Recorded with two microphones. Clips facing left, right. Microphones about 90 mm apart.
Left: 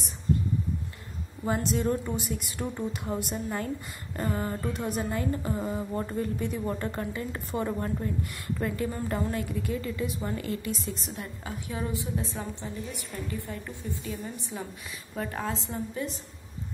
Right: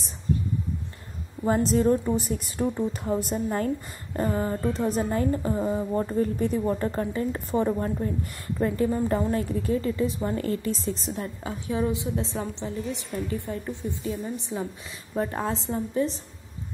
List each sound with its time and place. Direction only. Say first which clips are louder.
1.4 s a woman's voice: right 6 dB; 35° right (ahead or behind)
4.2 s a woman's voice: right 5 dB; 25° right (ahead or behind)
14.5 s speech: right 7 dB; 20° right (ahead or behind)
15.1 s a woman's voice: right 5 dB; 30° right (ahead or behind)